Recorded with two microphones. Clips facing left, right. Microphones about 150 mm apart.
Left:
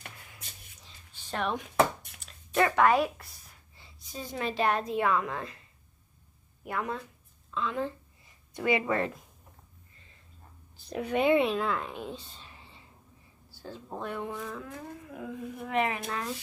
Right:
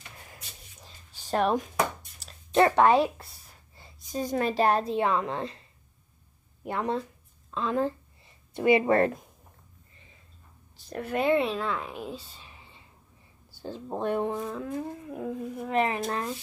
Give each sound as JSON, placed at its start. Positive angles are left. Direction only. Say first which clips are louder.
{"t": 0.8, "sound": "a sound", "louder": "right 8 dB", "side_deg": -40}
{"t": 2.1, "sound": "speech", "louder": "right 5 dB", "side_deg": -35}
{"t": 3.7, "sound": "a woman's voice", "louder": "right 9 dB", "side_deg": -45}
{"t": 6.6, "sound": "speech", "louder": "right 5 dB", "side_deg": -30}
{"t": 8.5, "sound": "speech", "louder": "right 6 dB", "side_deg": -25}
{"t": 8.8, "sound": "speech", "louder": "right 7 dB", "side_deg": -50}
{"t": 10.8, "sound": "speech", "louder": "left 1 dB", "side_deg": 0}
{"t": 13.6, "sound": "speech", "louder": "right 6 dB", "side_deg": -25}